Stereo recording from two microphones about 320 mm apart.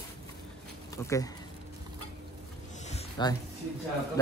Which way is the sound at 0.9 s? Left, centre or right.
Centre.